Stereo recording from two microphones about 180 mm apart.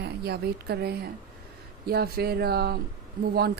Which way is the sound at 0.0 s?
65° right (ahead or behind).